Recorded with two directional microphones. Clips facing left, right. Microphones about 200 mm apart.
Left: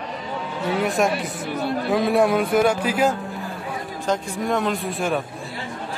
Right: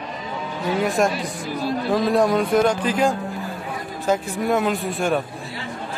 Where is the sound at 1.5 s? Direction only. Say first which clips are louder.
Even; 60° left (ahead or behind).